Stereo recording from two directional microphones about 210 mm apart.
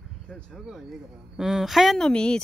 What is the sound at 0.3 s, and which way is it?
Speech, centre (ahead or behind).